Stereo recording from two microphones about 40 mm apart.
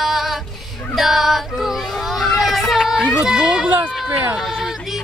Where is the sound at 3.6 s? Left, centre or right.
Right.